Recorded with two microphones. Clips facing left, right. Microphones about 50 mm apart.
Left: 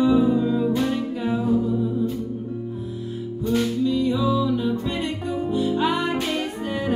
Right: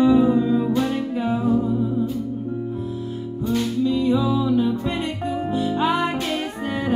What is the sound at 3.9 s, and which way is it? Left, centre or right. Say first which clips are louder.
Music: right 4 dB; right.